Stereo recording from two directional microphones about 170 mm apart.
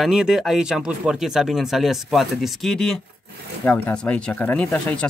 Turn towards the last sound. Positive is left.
turn(degrees=5)  # may be behind; listen again after turning